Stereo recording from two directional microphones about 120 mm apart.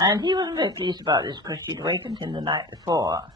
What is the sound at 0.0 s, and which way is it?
Speech, 30° right (ahead or behind).